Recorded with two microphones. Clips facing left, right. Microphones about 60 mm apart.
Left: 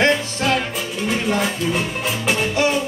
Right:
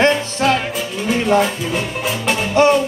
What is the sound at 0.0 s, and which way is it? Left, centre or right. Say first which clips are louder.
Music: right 3 dB; right.